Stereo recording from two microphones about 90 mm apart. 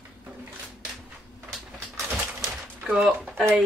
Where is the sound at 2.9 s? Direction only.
10° right (ahead or behind).